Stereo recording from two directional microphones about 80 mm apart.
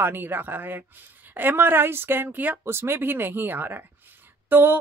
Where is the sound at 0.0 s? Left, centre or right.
Right.